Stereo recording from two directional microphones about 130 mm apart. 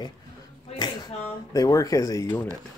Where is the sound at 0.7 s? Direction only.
30° left (ahead or behind).